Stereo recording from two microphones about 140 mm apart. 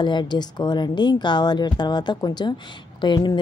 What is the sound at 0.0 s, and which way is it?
Speech, 35° left (ahead or behind).